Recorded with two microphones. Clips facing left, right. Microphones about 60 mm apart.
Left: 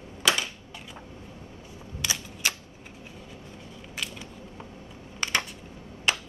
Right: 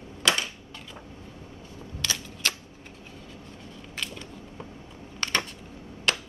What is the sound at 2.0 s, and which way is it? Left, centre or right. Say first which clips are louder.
Camera: even; centre.